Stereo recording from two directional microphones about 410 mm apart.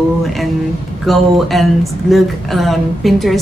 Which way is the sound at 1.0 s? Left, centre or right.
Centre.